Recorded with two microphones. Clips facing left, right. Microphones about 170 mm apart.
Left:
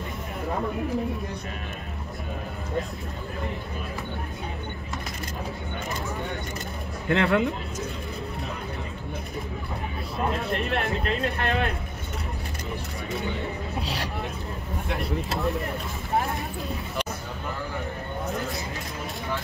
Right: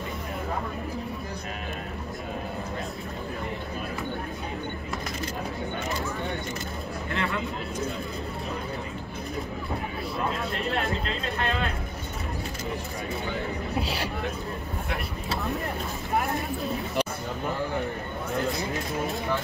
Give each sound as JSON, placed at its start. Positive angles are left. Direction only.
{"t": 7.1, "sound": "speech", "side_deg": 75}
{"t": 10.7, "sound": "a sound", "side_deg": 60}
{"t": 13.7, "sound": "speech", "side_deg": 0}